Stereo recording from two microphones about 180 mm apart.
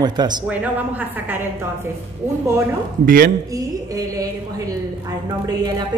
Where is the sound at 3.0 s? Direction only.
50° right (ahead or behind).